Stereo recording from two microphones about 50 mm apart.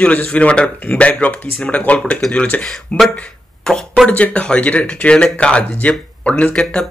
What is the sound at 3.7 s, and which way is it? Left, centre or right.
Speech, centre.